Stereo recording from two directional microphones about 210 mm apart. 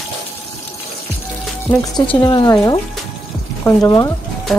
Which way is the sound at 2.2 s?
20° left (ahead or behind).